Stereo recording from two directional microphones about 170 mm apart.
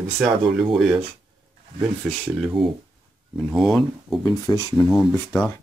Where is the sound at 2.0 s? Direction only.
Centre (ahead or behind).